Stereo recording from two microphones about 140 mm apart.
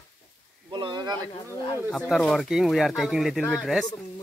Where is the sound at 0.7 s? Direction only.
30° right (ahead or behind).